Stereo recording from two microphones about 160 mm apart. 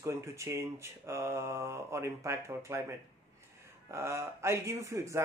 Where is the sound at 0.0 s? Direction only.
20° right (ahead or behind).